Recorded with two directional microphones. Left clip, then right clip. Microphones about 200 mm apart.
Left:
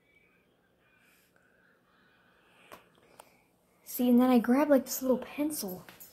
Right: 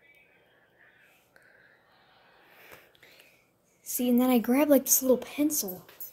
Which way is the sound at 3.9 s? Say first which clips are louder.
Even; 5° right (ahead or behind).